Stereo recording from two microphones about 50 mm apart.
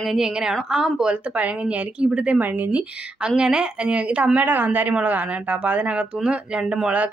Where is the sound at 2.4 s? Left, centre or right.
Right; by 6.8 s centre.